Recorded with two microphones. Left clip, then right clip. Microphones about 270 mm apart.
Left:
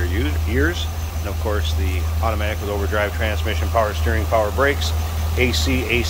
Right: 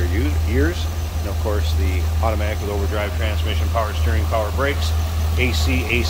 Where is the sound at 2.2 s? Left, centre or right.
Centre.